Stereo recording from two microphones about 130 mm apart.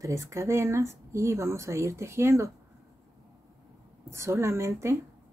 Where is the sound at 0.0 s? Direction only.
25° right (ahead or behind).